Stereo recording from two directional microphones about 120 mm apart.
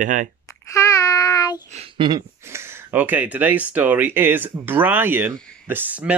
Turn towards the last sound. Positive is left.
turn(degrees=-10)  # may be behind; listen again after turning